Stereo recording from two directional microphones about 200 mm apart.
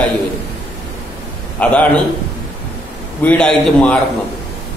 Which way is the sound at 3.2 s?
5° left (ahead or behind).